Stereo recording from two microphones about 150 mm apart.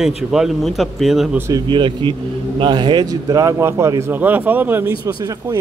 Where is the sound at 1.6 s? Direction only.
35° right (ahead or behind); by 4.9 s 10° right (ahead or behind).